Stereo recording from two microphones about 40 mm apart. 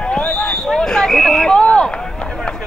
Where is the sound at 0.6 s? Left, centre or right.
Centre.